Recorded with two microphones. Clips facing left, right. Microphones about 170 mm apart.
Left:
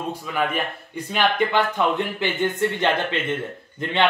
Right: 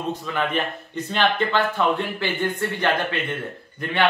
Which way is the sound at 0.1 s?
10° left (ahead or behind).